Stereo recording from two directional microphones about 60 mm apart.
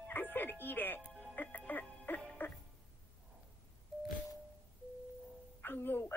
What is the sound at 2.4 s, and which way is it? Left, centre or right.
Speech, left.